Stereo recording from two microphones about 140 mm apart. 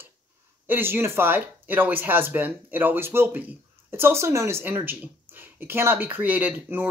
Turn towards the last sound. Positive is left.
turn(degrees=-15)  # may be behind; listen again after turning